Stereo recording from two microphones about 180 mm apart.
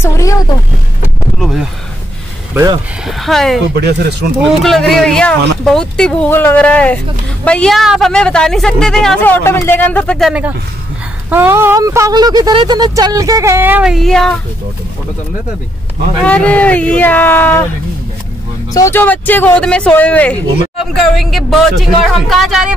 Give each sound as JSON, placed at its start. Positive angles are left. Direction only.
{"t": 0.0, "sound": "a sound", "side_deg": 15}
{"t": 1.4, "sound": "a sound", "side_deg": 0}
{"t": 2.5, "sound": "speech", "side_deg": -20}
{"t": 3.1, "sound": "speech", "side_deg": 0}
{"t": 16.3, "sound": "speech", "side_deg": 5}
{"t": 18.7, "sound": "speech", "side_deg": 15}